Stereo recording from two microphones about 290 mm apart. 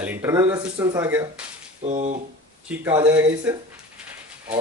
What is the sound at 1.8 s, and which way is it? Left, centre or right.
Speech, right.